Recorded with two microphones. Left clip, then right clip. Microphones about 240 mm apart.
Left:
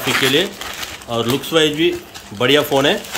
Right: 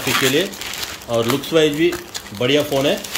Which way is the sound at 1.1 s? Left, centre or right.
Centre.